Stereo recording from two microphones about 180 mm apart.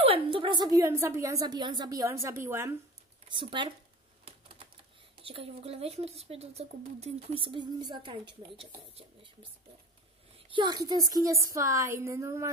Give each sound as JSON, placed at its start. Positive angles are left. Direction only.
{"t": 0.0, "sound": "a woman's voice", "side_deg": -30}
{"t": 3.3, "sound": "speech", "side_deg": -25}
{"t": 5.2, "sound": "speech", "side_deg": -30}
{"t": 10.5, "sound": "a woman's voice", "side_deg": -25}